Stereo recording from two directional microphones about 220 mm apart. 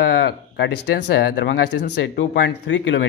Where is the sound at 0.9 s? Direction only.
50° left (ahead or behind).